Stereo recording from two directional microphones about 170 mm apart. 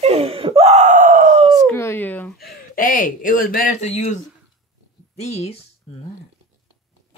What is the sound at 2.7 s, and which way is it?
Speech, 55° left (ahead or behind).